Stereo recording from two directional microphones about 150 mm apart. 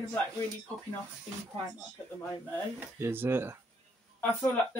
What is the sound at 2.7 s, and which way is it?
Speech, 15° right (ahead or behind).